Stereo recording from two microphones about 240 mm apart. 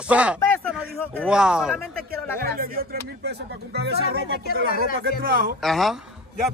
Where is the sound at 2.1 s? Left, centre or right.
Right.